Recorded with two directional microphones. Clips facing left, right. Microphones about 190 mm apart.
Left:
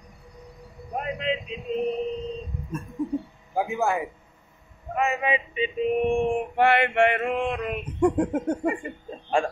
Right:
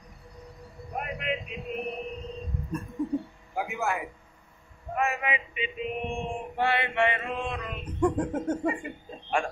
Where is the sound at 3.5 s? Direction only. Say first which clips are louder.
Left 6 dB; 30° left (ahead or behind).